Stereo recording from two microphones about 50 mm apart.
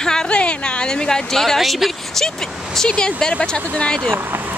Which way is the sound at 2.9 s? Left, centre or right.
Left.